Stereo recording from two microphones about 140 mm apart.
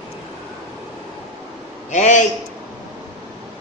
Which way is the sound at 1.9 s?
60° left (ahead or behind).